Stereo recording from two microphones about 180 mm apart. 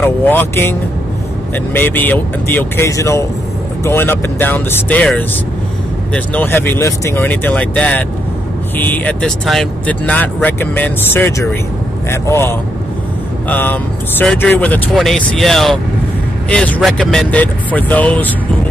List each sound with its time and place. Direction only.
0.0 s speech: 10° left (ahead or behind)